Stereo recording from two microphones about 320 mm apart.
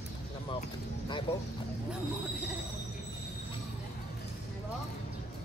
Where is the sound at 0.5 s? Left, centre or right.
Centre.